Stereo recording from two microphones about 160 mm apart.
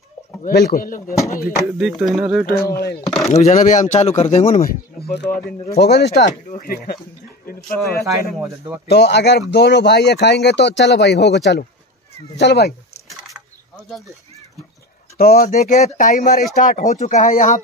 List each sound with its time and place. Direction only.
0.5 s a man's voice: 70° left (ahead or behind)
1.1 s speech: 20° left (ahead or behind)
1.4 s speech: 5° right (ahead or behind)
2.5 s speech: 75° left (ahead or behind)
3.3 s speech: 45° left (ahead or behind); by 6.3 s 90° left
6.5 s a man's voice: 60° left (ahead or behind)
8.4 s speech: 15° right (ahead or behind)
8.8 s speech: 90° left
13.3 s a sound: centre (ahead or behind)
15.1 s speech: 70° left (ahead or behind)
15.5 s speech: 45° left (ahead or behind)